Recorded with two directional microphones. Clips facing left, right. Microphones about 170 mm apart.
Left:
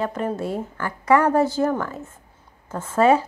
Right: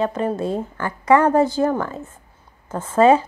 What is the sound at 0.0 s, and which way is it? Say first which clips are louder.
A woman's voice: right 3 dB; 20° right (ahead or behind).